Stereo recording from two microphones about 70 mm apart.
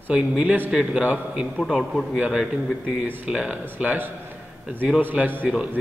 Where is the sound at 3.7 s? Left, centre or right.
Right.